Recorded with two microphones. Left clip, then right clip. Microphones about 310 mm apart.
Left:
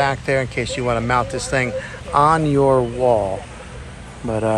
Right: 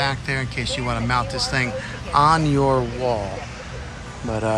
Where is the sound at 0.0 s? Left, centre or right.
Centre.